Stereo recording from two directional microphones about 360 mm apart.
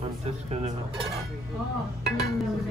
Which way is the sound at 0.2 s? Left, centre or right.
Centre.